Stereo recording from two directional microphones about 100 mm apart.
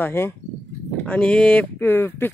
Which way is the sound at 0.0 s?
25° left (ahead or behind).